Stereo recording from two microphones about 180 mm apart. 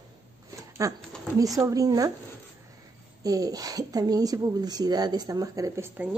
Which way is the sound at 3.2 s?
20° right (ahead or behind).